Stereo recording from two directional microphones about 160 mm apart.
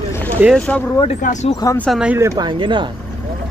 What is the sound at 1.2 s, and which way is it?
Speech, 50° left (ahead or behind).